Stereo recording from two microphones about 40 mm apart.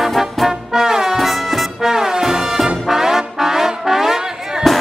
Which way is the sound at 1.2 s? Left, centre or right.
Centre.